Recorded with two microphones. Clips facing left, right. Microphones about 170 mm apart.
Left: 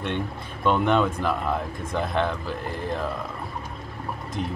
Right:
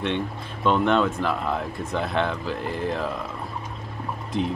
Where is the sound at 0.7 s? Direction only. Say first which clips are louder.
Right 1 dB; 10° left (ahead or behind).